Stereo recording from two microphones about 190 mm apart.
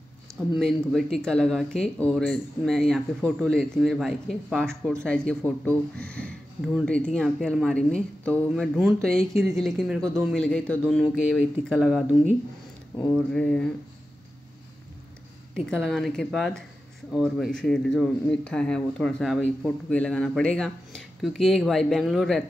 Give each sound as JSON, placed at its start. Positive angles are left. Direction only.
{"t": 0.6, "sound": "speech", "side_deg": 0}
{"t": 13.3, "sound": "speech", "side_deg": 5}
{"t": 15.5, "sound": "speech", "side_deg": 5}